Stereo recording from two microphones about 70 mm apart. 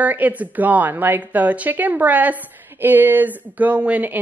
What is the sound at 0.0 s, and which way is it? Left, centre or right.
Speech, right.